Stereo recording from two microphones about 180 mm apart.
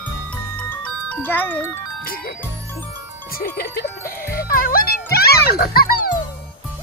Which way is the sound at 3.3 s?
55° left (ahead or behind).